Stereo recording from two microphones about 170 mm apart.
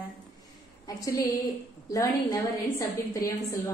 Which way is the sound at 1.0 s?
20° left (ahead or behind).